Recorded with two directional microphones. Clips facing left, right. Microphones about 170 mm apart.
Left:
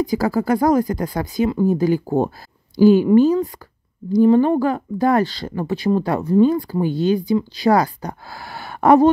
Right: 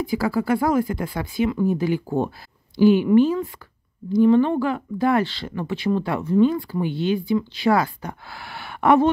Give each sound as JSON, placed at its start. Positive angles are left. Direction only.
{"t": 0.0, "sound": "speech", "side_deg": 40}